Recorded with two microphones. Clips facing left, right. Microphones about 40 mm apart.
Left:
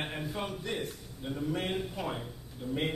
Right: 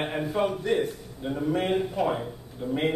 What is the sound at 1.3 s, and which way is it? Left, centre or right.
A man's voice, right.